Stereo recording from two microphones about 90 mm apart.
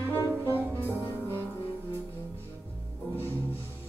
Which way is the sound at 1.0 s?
25° left (ahead or behind).